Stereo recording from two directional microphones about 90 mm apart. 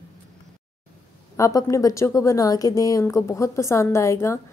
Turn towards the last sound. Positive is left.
turn(degrees=30)  # may be behind; listen again after turning